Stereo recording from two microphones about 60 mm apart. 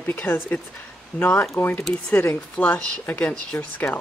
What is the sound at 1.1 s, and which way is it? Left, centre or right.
Speech, left.